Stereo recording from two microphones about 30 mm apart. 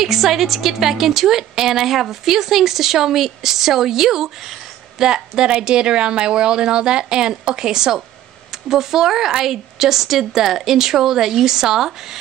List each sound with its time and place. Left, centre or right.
0.0 s a woman's voice: centre